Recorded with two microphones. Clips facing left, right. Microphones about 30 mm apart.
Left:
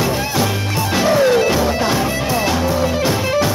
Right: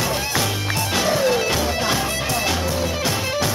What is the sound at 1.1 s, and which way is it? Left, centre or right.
Music, left.